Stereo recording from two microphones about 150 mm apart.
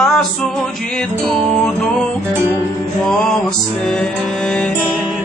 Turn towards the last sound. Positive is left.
turn(degrees=5)  # may be behind; listen again after turning